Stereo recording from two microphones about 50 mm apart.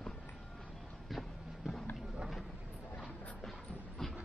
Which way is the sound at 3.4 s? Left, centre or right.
Centre.